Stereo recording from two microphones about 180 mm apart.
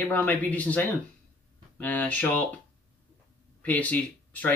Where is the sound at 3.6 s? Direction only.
10° left (ahead or behind).